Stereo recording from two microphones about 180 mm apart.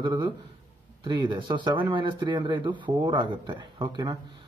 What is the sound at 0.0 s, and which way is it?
Speech, 25° right (ahead or behind).